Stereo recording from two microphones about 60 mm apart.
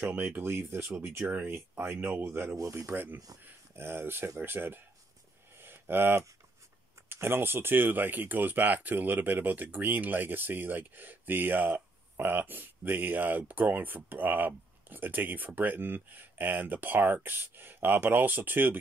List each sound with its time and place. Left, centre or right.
0.1 s speech: right
5.6 s a sound: right
7.1 s speech: right